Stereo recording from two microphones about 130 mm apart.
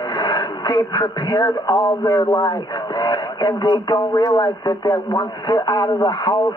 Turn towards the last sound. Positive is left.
turn(degrees=30)  # may be behind; listen again after turning